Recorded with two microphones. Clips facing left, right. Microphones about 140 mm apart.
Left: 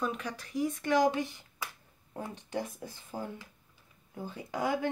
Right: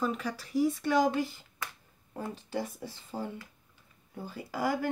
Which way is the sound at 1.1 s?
15° left (ahead or behind).